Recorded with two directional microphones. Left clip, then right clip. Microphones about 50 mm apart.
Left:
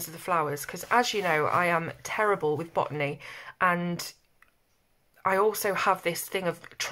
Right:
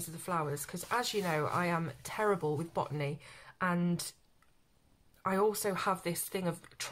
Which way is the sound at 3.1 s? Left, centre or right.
Left.